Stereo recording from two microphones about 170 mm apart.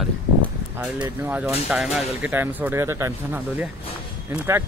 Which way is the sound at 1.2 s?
10° right (ahead or behind).